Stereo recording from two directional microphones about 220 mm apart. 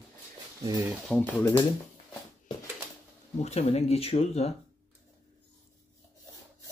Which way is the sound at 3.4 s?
30° left (ahead or behind).